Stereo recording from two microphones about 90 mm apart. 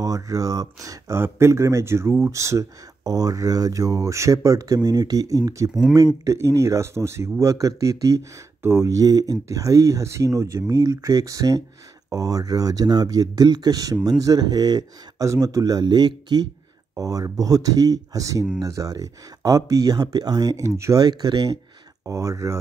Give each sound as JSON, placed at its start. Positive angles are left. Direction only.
{"t": 0.0, "sound": "speech", "side_deg": -40}
{"t": 16.9, "sound": "speech", "side_deg": -40}
{"t": 21.0, "sound": "speech", "side_deg": -50}
{"t": 22.0, "sound": "speech", "side_deg": -35}